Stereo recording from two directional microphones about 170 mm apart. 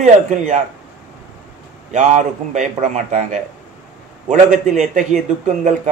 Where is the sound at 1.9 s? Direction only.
45° right (ahead or behind).